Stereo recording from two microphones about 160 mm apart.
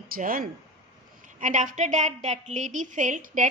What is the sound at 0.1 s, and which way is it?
A woman's voice, 60° right (ahead or behind).